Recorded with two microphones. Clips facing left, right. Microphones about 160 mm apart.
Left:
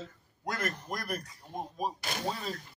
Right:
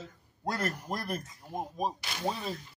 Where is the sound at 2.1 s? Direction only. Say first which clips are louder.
Even; 45° left (ahead or behind).